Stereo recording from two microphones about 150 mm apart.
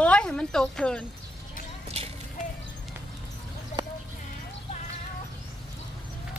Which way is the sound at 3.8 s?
30° right (ahead or behind).